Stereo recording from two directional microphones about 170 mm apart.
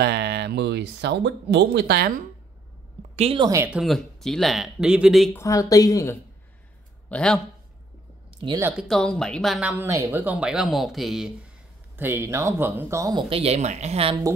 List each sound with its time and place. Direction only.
0.0 s speech: 75° right (ahead or behind)
3.2 s a woman's voice: 35° right (ahead or behind)
3.4 s speech: 15° right (ahead or behind)
3.7 s speech: centre (ahead or behind)
5.3 s speech: 20° left (ahead or behind)
7.1 s a man's voice: 5° left (ahead or behind)
8.7 s speech: centre (ahead or behind)
12.0 s speech: 15° right (ahead or behind)
13.3 s speech: 35° right (ahead or behind)